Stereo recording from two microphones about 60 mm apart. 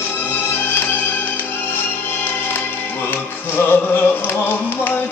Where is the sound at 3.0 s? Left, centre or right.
Left.